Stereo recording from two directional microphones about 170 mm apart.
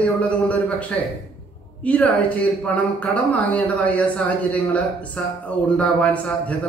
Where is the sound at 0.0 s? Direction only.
10° left (ahead or behind).